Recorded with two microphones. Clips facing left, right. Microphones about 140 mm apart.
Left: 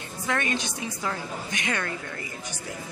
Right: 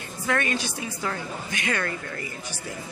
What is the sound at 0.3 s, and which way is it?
A woman's voice, 20° left (ahead or behind).